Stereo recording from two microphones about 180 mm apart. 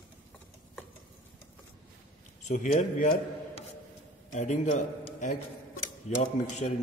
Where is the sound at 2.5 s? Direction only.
40° left (ahead or behind).